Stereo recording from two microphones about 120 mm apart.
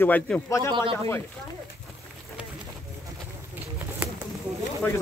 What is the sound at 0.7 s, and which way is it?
Speech, 45° right (ahead or behind).